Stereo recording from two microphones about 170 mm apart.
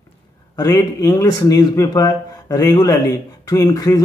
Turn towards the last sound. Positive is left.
turn(degrees=20)  # may be behind; listen again after turning